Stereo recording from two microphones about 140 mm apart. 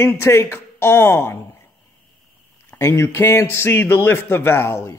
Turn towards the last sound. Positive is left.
turn(degrees=20)  # may be behind; listen again after turning